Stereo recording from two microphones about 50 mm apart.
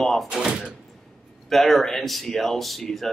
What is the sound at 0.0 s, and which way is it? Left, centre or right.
Speech, centre.